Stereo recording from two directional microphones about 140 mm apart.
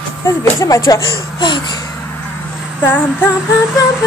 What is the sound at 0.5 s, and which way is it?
Speech, 25° left (ahead or behind).